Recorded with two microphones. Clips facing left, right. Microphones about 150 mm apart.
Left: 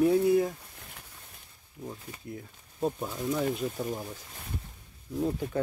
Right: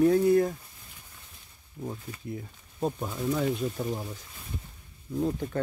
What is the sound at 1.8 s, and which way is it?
Speech, 30° right (ahead or behind).